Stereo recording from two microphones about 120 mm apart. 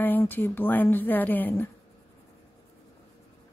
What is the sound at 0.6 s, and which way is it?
A woman's voice, 15° left (ahead or behind).